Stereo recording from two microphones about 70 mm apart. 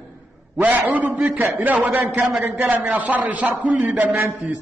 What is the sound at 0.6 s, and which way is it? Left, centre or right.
A man's voice, right.